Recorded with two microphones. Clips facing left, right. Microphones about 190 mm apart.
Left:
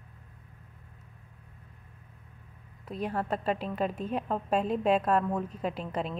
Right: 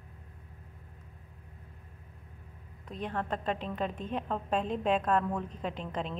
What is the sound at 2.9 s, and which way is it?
A woman's voice, 10° left (ahead or behind).